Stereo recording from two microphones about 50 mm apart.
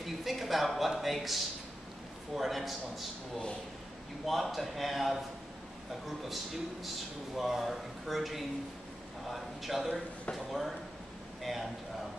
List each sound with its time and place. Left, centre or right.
0.0 s speech: centre
4.3 s speech: centre